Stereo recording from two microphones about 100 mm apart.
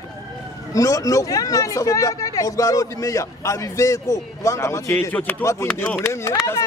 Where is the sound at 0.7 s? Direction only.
35° left (ahead or behind).